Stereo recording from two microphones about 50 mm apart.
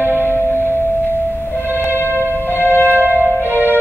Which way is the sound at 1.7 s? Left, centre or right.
Right.